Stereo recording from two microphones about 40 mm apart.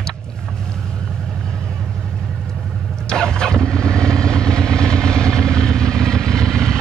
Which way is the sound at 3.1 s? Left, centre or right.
Centre.